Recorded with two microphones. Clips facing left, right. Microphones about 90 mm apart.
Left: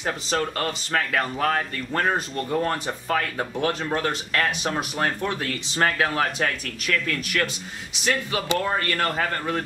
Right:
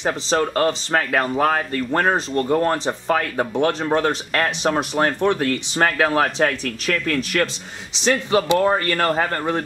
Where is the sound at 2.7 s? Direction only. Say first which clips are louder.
Right 5 dB; 25° right (ahead or behind).